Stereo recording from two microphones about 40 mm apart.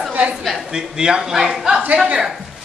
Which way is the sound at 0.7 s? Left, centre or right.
Centre.